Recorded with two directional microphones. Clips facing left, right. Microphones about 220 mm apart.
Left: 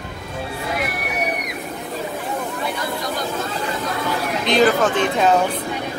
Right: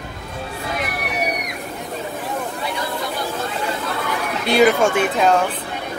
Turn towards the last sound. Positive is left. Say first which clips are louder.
# right 1 dB
turn(degrees=-10)  # may be behind; listen again after turning